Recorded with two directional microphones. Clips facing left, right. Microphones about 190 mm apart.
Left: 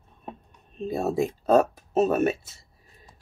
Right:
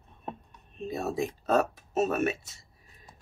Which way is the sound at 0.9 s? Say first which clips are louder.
Left 6 dB; 30° left (ahead or behind).